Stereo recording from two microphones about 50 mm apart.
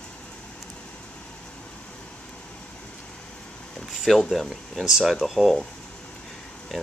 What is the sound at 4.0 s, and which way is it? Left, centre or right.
Speech, centre.